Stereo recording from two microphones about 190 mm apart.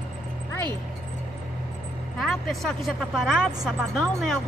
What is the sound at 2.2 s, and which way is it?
A woman's voice, centre (ahead or behind).